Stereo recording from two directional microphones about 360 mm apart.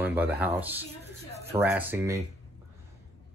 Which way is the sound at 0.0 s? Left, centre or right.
Centre.